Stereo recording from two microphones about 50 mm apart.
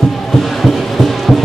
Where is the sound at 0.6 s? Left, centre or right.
Centre.